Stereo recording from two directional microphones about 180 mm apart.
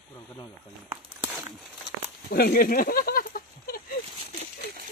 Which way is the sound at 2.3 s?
55° left (ahead or behind).